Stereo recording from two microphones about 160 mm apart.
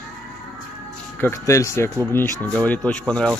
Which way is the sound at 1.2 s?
15° left (ahead or behind).